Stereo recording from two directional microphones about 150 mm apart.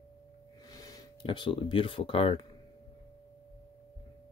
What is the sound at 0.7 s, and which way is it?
Gasp, 25° left (ahead or behind).